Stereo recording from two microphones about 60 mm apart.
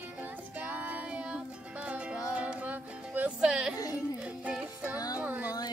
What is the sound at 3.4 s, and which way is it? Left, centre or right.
Music, centre.